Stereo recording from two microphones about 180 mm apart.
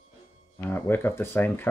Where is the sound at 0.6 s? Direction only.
10° left (ahead or behind).